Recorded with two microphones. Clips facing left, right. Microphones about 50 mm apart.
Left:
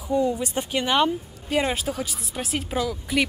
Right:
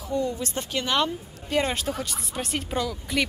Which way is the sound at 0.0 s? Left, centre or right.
Centre.